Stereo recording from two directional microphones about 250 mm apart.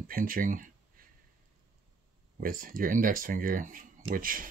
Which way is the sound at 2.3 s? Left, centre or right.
Right.